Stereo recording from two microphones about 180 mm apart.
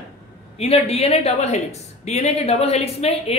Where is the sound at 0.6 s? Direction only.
35° left (ahead or behind).